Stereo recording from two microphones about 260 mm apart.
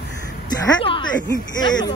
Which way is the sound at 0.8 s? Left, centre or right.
Centre.